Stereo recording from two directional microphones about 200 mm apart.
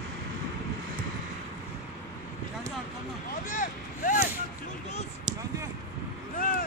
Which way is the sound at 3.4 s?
40° left (ahead or behind).